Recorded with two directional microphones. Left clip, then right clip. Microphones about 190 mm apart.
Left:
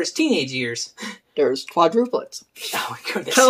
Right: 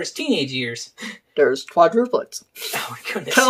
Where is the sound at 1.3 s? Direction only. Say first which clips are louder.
Right 3 dB; 15° right (ahead or behind).